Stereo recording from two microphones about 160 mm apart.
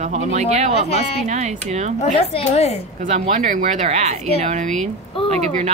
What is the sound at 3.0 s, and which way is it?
Speech, 50° right (ahead or behind).